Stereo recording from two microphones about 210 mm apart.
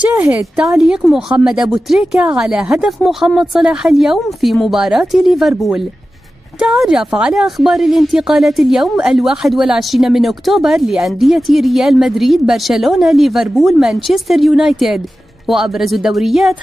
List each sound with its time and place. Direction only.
0.1 s a woman's voice: 5° right (ahead or behind)